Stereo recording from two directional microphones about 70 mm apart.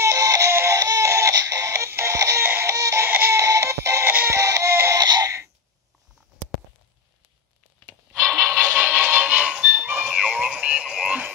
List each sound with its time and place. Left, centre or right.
0.0 s music: right
0.5 s crying: right
0.7 s a sound: right
1.3 s music: right
2.1 s music: right
2.4 s music: right
2.7 s a sound: right
3.1 s music: right
3.3 s music: right
4.0 s music: right
4.3 s music: right
4.9 s a sound: right
8.5 s music: right